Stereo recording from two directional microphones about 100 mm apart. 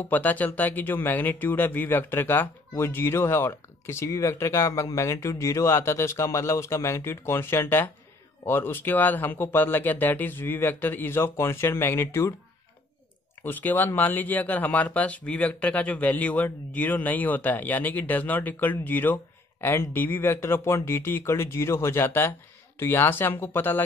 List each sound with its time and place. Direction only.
0.0 s speech: 15° left (ahead or behind)
13.4 s speech: 20° left (ahead or behind)